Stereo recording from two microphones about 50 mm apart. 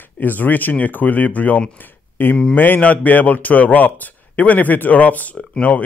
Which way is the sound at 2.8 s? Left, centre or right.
Left.